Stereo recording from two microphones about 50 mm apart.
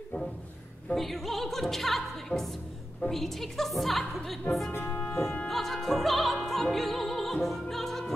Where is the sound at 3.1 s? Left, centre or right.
Centre.